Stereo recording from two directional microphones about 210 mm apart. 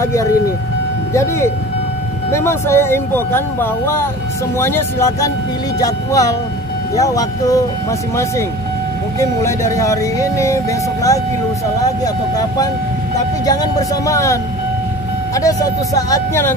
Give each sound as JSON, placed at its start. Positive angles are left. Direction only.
{"t": 0.0, "sound": "speech", "side_deg": 15}
{"t": 9.2, "sound": "speech", "side_deg": 15}
{"t": 13.5, "sound": "speech", "side_deg": 15}